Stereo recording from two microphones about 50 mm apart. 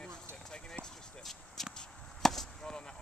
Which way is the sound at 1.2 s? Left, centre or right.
Centre.